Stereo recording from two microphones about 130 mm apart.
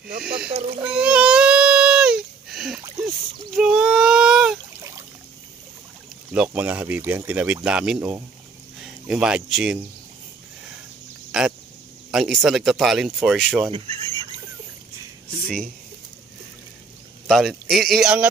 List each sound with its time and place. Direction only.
0.2 s speech: 5° right (ahead or behind)
0.9 s baby cry: 10° right (ahead or behind)
3.5 s a sound: 5° right (ahead or behind)
6.3 s speech: 10° right (ahead or behind)
11.3 s speech: 5° right (ahead or behind)
13.7 s speech: 40° right (ahead or behind)
17.3 s speech: centre (ahead or behind)